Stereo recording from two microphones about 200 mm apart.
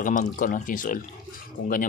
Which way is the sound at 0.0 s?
40° left (ahead or behind).